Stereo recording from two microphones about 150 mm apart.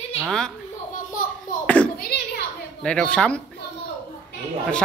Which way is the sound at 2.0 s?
90° left.